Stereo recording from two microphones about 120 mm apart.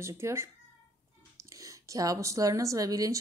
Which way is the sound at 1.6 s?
30° right (ahead or behind).